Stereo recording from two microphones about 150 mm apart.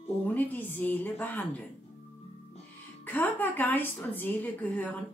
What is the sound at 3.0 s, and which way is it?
A woman's voice, 10° left (ahead or behind).